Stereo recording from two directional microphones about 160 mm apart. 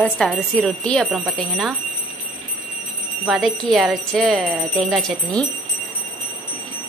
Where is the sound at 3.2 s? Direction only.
Centre (ahead or behind).